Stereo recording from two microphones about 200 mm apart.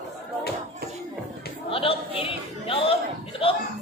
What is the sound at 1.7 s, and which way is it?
Chatter, 30° left (ahead or behind).